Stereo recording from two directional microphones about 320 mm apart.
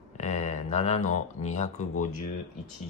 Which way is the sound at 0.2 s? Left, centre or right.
Left.